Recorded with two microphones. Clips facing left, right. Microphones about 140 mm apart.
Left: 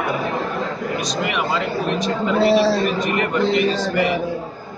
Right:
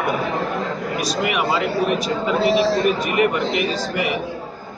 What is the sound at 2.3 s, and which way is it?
Speech, 40° left (ahead or behind).